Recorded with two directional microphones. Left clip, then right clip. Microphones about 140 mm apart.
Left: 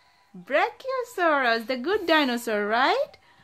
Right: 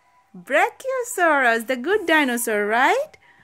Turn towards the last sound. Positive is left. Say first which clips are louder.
# right 3 dB
turn(degrees=-5)  # may be behind; listen again after turning